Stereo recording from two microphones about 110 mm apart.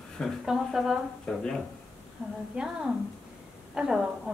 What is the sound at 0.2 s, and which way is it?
Speech, 5° right (ahead or behind).